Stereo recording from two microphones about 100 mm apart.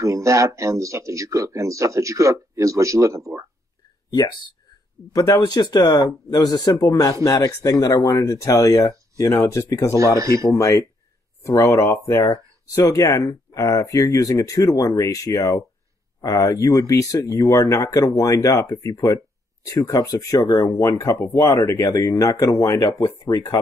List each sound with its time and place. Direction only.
0.0 s speech: 30° right (ahead or behind)
5.1 s speech: 35° left (ahead or behind)
5.4 s speech: 45° left (ahead or behind)
10.1 s speech: 30° right (ahead or behind)
10.5 s speech: 30° left (ahead or behind)